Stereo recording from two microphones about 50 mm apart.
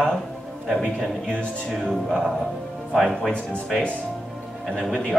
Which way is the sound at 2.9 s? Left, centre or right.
Centre.